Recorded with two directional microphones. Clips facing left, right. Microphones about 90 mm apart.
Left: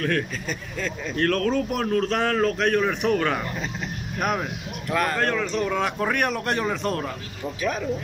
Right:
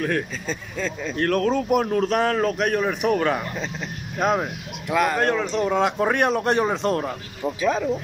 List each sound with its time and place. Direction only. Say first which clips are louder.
0.0 s a man's voice: right 1 dB; 15° right (ahead or behind)